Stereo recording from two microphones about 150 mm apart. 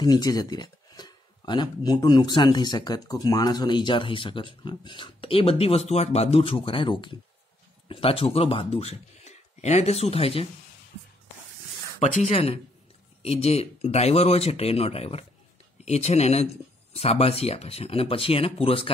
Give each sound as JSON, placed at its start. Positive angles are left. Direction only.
{"t": 0.0, "sound": "speech", "side_deg": 25}
{"t": 12.0, "sound": "speech", "side_deg": 50}